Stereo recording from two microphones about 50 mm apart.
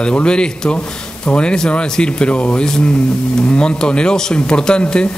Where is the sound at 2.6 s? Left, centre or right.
Centre.